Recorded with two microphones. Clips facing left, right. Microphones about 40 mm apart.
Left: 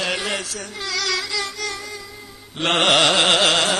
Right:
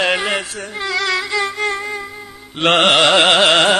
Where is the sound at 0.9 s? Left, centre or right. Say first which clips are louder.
Right 6 dB; right.